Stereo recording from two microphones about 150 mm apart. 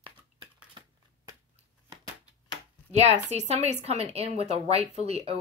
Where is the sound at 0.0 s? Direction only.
35° right (ahead or behind).